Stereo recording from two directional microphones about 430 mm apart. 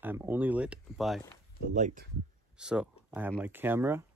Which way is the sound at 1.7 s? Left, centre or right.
Centre.